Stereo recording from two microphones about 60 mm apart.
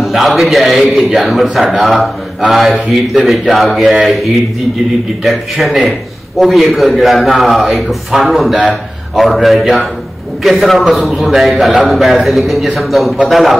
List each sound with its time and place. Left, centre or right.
0.0 s a man's voice: centre